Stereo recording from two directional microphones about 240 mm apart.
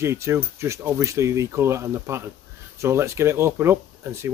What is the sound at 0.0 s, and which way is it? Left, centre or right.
Speech, centre.